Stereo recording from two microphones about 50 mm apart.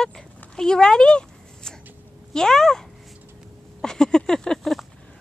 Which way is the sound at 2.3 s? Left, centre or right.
Centre.